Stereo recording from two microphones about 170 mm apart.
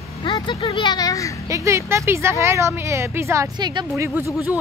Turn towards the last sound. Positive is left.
turn(degrees=-10)  # may be behind; listen again after turning